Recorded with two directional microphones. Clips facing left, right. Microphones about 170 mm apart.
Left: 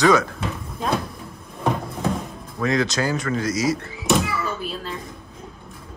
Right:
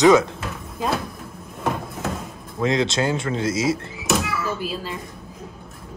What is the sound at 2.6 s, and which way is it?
Speech, 20° right (ahead or behind).